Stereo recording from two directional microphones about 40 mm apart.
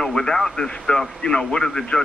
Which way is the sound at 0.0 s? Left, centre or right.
Centre.